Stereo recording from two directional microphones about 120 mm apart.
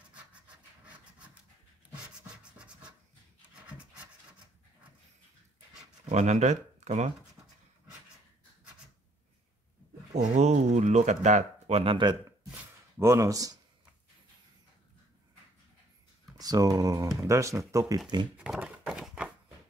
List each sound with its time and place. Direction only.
2.2 s scratch: 10° right (ahead or behind)
3.6 s rub: 10° right (ahead or behind)
6.0 s speech: 75° right (ahead or behind)
10.3 s speech: 75° right (ahead or behind); by 12.2 s 45° right (ahead or behind)
13.0 s speech: 25° right (ahead or behind)
16.3 s speech: 30° right (ahead or behind)
18.4 s a sound: 5° right (ahead or behind)